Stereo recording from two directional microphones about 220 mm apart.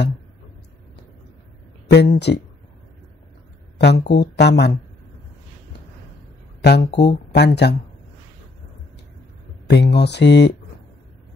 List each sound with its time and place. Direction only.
1.9 s speech: 50° left (ahead or behind)
3.7 s speech: 50° left (ahead or behind)
6.6 s speech: 50° left (ahead or behind)
9.7 s speech: 50° left (ahead or behind)